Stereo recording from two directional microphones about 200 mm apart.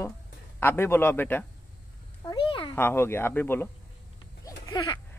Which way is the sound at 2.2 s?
20° left (ahead or behind).